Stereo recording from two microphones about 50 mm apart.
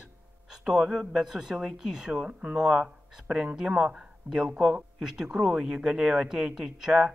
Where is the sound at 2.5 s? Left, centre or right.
Centre.